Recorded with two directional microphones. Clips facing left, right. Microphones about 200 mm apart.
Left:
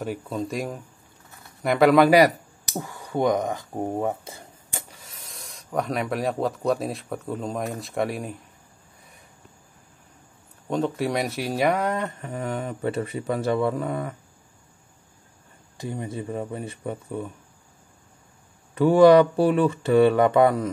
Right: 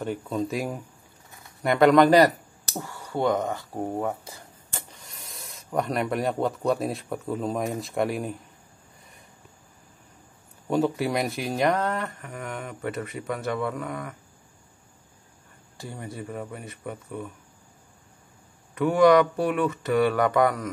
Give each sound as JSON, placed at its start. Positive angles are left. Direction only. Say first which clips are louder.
{"t": 0.0, "sound": "speech", "louder": "right 1 dB", "side_deg": 0}
{"t": 5.0, "sound": "speech", "louder": "even", "side_deg": 0}
{"t": 10.7, "sound": "speech", "louder": "right 1 dB", "side_deg": -5}
{"t": 12.2, "sound": "speech", "louder": "left 6 dB", "side_deg": 30}
{"t": 15.8, "sound": "speech", "louder": "left 5 dB", "side_deg": 20}
{"t": 18.8, "sound": "speech", "louder": "left 4 dB", "side_deg": 30}